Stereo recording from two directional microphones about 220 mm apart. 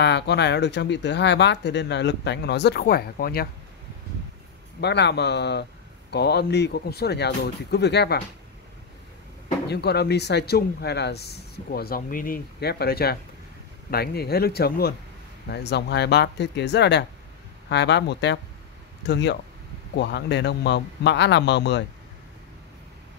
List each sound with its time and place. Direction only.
0.0 s speech: 50° left (ahead or behind)
4.7 s speech: 50° left (ahead or behind)
9.7 s speech: 50° left (ahead or behind)